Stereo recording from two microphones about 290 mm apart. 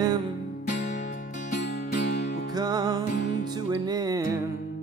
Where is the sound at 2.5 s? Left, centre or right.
Centre.